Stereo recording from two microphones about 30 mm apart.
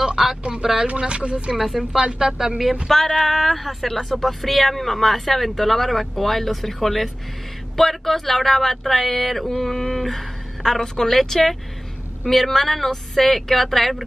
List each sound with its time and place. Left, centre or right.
0.0 s a sound: right
0.6 s speech: right
0.8 s speech: right
1.6 s speech: centre
2.9 s speech: centre
3.2 s speech: centre